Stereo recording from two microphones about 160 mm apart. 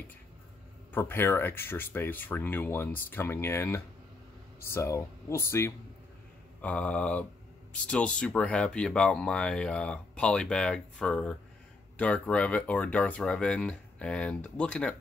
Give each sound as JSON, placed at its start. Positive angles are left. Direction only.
{"t": 0.9, "sound": "speech", "side_deg": 15}